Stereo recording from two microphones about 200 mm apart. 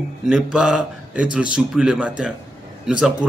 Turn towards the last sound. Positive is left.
turn(degrees=-5)  # may be behind; listen again after turning